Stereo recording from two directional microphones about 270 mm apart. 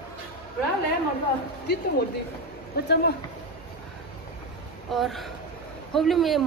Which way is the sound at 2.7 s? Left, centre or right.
Left.